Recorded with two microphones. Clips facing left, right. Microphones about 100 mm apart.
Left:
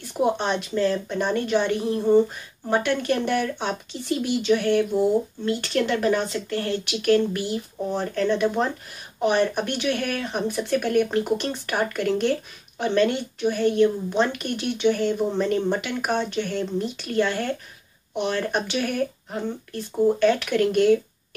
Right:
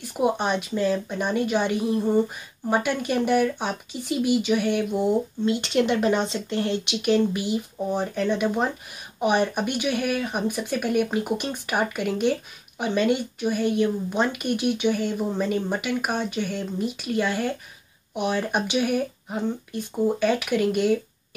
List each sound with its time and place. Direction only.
0.2 s speech: 10° right (ahead or behind)